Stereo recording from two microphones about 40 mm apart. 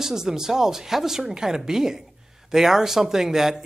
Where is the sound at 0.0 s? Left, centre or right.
Centre.